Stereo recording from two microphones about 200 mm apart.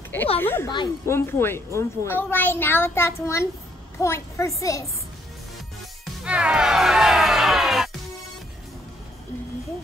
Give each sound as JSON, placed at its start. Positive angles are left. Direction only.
{"t": 0.4, "sound": "speech", "side_deg": 10}
{"t": 0.7, "sound": "speech", "side_deg": 20}
{"t": 6.2, "sound": "music", "side_deg": -5}